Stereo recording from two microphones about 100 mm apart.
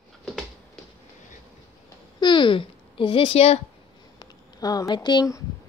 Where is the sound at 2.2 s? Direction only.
55° left (ahead or behind); by 3.6 s 80° left.